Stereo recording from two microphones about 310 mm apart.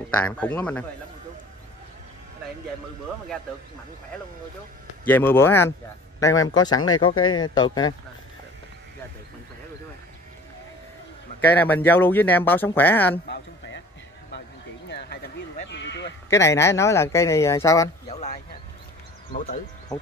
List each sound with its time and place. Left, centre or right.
0.1 s speech: centre
5.0 s speech: centre
11.4 s speech: centre
13.3 s a sound: left
14.9 s a sound: left
16.3 s speech: centre; by 19.6 s left